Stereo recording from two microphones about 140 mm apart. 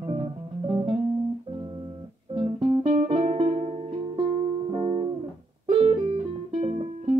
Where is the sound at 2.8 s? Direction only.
50° right (ahead or behind).